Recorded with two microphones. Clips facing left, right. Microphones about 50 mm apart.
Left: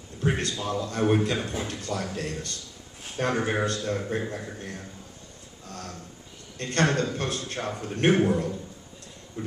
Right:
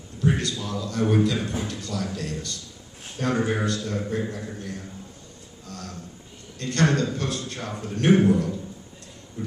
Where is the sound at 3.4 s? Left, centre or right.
Left.